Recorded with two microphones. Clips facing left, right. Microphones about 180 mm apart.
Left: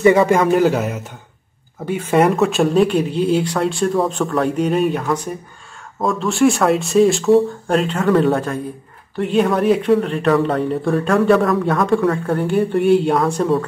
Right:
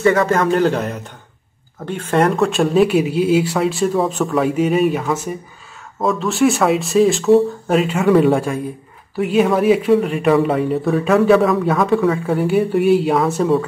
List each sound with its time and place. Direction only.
0.0 s speech: 15° left (ahead or behind); by 13.7 s centre (ahead or behind)